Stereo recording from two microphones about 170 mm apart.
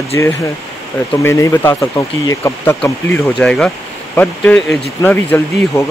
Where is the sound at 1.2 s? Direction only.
15° left (ahead or behind).